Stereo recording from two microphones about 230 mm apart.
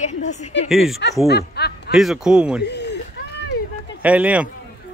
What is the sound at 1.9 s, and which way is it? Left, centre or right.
Speech, centre.